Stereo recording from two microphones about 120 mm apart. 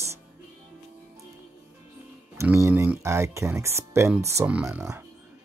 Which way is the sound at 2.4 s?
20° right (ahead or behind).